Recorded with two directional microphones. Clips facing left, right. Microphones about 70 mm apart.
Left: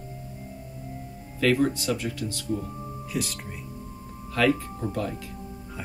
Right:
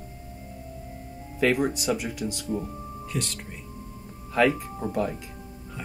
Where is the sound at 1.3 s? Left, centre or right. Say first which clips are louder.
Left 1 dB; centre.